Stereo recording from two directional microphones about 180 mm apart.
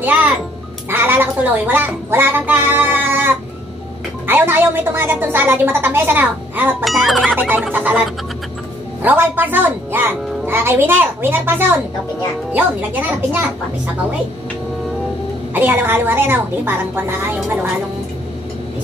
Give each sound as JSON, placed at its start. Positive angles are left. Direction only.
{"t": 0.0, "sound": "music", "side_deg": -10}
{"t": 0.8, "sound": "a woman's voice", "side_deg": -10}
{"t": 4.3, "sound": "a woman's voice", "side_deg": -10}
{"t": 7.6, "sound": "a sound", "side_deg": -5}
{"t": 9.0, "sound": "a woman's voice", "side_deg": -10}
{"t": 15.5, "sound": "a woman's voice", "side_deg": -10}